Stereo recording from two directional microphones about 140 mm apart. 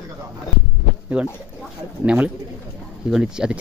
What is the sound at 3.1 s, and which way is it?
Speech, 5° right (ahead or behind).